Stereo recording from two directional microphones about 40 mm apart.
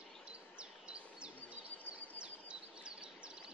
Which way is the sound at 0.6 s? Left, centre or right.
Right.